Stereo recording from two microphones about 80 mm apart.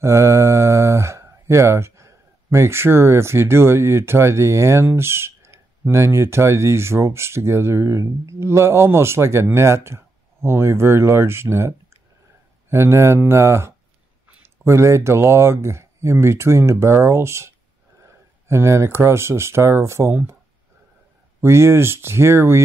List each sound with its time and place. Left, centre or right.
0.0 s speech: right
21.4 s speech: right